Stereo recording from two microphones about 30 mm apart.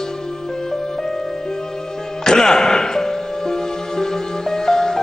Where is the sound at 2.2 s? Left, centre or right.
Centre.